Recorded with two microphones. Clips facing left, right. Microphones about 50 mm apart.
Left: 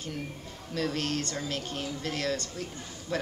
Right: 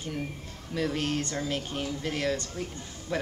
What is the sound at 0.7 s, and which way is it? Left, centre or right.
A woman's voice, centre.